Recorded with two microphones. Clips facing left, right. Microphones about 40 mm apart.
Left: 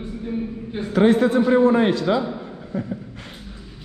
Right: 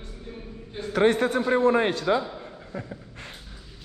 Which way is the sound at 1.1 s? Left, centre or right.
Left.